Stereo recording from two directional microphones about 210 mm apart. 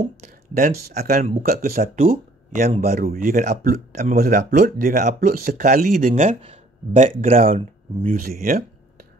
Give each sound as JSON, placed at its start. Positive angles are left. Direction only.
{"t": 0.6, "sound": "speech", "side_deg": -45}